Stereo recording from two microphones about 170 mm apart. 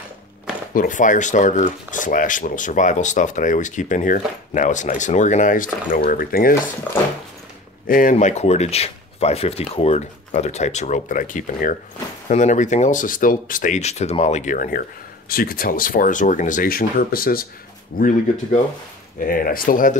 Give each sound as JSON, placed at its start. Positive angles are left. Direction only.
{"t": 0.7, "sound": "speech", "side_deg": 50}
{"t": 7.8, "sound": "speech", "side_deg": 55}